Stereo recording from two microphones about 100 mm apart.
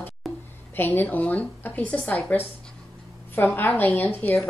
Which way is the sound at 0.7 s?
20° left (ahead or behind).